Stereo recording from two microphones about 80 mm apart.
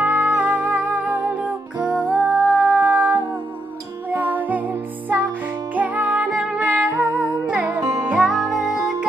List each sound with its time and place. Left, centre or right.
0.0 s music: centre